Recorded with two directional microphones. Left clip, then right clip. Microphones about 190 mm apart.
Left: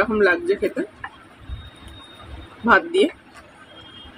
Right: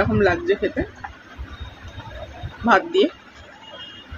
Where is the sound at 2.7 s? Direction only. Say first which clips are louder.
Left 1 dB; 5° right (ahead or behind).